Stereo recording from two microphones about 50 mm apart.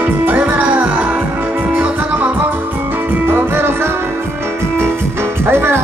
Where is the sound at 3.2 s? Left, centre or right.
Right.